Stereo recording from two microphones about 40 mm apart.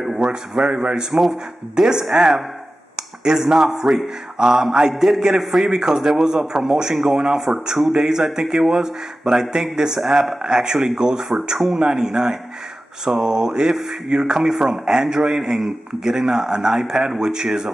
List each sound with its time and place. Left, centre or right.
0.0 s a sound: centre
0.7 s speech: right
1.1 s a man's voice: centre
14.0 s a man's voice: right